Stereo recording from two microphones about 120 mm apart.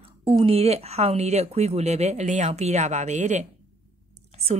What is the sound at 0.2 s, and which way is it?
Speech, 55° right (ahead or behind).